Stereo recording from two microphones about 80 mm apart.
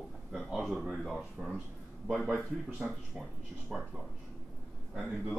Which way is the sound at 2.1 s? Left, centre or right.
Centre.